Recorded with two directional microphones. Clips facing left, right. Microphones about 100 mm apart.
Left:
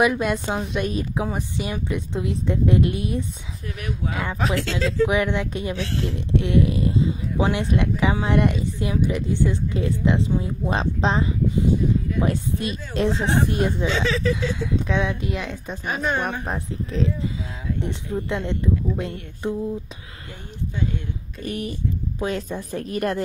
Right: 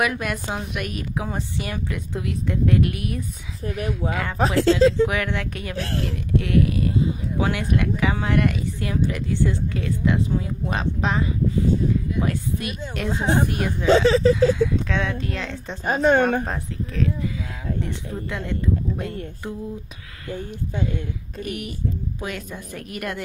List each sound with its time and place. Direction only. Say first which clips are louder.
0.0 s speech: left 4 dB; 20° left (ahead or behind)
1.2 s speech: left 2 dB; 15° left (ahead or behind)
3.6 s speech: right 4 dB; 30° right (ahead or behind)
4.1 s speech: right 1 dB; 20° left (ahead or behind)
4.4 s speech: right 9 dB; 35° right (ahead or behind)
5.0 s speech: left 2 dB; 20° left (ahead or behind)
13.1 s speech: right 5 dB; 20° right (ahead or behind)
13.5 s speech: left 3 dB; 20° left (ahead or behind)
13.8 s speech: right 7 dB; 35° right (ahead or behind)
14.6 s speech: right 1 dB; 15° left (ahead or behind)
15.8 s speech: right 7 dB; 45° right (ahead or behind)
16.4 s speech: left 1 dB; 20° left (ahead or behind)
20.3 s speech: right 1 dB; 45° right (ahead or behind)
21.4 s a woman's voice: left 1 dB; 35° left (ahead or behind)